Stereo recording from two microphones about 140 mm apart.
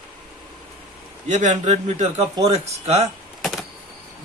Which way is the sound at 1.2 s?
55° right (ahead or behind).